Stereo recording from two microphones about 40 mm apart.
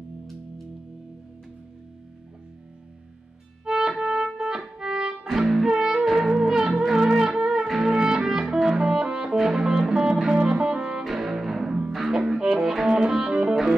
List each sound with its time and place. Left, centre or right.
3.6 s music: centre
5.3 s music: centre
11.1 s cello: centre
12.1 s music: centre